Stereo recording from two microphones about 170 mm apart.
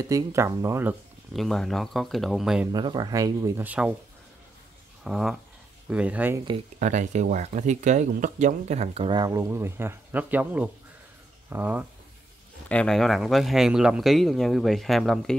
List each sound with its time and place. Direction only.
0.1 s speech: 20° right (ahead or behind)
1.3 s speech: centre (ahead or behind)
2.7 s speech: 25° right (ahead or behind); by 3.9 s 10° right (ahead or behind)
5.0 s speech: centre (ahead or behind)
6.8 s speech: 45° right (ahead or behind); by 11.8 s 10° right (ahead or behind)
12.6 s speech: 5° left (ahead or behind)